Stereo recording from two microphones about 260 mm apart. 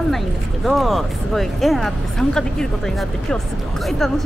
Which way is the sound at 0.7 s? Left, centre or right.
Centre.